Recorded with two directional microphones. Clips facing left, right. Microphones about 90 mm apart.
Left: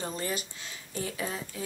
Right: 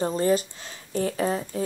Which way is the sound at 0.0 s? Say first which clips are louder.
Right 11 dB; 40° right (ahead or behind).